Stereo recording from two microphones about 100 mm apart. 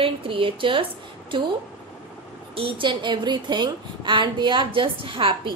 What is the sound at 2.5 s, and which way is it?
A woman's voice, 60° right (ahead or behind).